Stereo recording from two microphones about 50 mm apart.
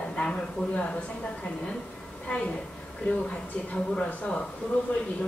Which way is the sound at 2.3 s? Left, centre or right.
Left.